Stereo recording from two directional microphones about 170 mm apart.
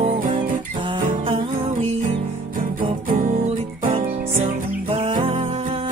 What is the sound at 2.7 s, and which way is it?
Music, 50° right (ahead or behind).